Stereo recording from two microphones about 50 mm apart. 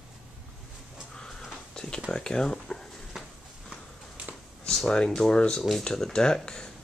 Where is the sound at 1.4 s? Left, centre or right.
Centre.